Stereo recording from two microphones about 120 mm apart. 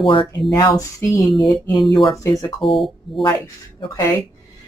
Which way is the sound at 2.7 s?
Centre (ahead or behind).